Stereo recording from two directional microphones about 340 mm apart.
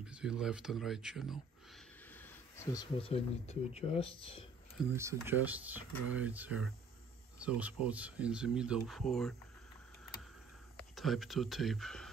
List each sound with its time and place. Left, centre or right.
0.0 s speech: centre
4.7 s speech: centre
11.0 s speech: centre